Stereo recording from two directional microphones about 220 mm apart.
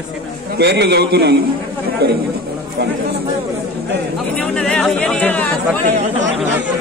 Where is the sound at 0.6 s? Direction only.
50° right (ahead or behind).